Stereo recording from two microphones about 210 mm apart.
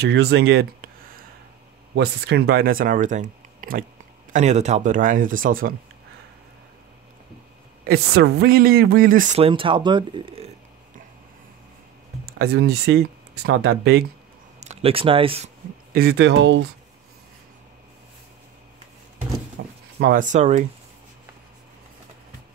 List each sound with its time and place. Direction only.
0.0 s speech: 55° right (ahead or behind)
2.0 s speech: 50° right (ahead or behind)
7.8 s a woman's voice: 50° right (ahead or behind); by 10.4 s 25° right (ahead or behind)
12.3 s speech: 50° right (ahead or behind)
13.6 s speech: 75° right (ahead or behind)
14.6 s speech: 30° right (ahead or behind)
15.9 s speech: 45° right (ahead or behind)
19.6 s a sound: 55° right (ahead or behind)
20.0 s speech: 40° right (ahead or behind)